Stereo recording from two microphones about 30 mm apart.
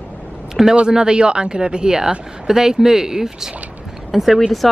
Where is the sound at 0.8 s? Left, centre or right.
Right.